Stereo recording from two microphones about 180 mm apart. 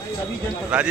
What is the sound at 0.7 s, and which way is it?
Speech, 5° right (ahead or behind).